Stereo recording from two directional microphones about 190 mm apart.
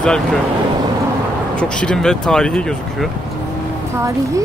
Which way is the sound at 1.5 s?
5° left (ahead or behind).